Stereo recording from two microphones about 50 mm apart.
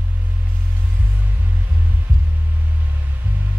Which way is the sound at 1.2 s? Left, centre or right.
Right.